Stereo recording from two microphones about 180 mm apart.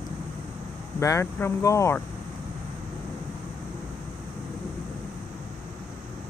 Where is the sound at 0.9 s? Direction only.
15° left (ahead or behind).